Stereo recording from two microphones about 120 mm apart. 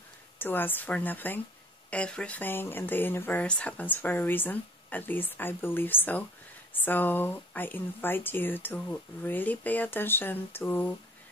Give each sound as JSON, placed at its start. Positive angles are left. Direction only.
{"t": 0.4, "sound": "speech", "side_deg": 15}